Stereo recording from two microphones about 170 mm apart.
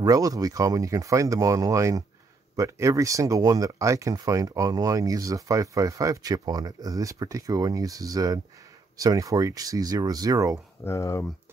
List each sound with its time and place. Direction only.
0.0 s speech: 20° right (ahead or behind)
10.8 s speech: 15° left (ahead or behind)